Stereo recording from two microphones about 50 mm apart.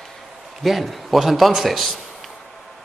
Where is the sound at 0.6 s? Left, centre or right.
Centre.